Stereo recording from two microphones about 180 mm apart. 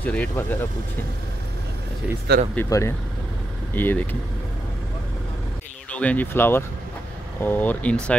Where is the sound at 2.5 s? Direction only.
15° left (ahead or behind).